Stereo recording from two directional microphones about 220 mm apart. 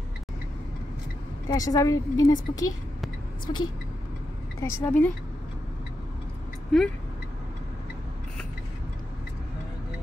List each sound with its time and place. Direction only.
1.5 s a woman's voice: 15° left (ahead or behind)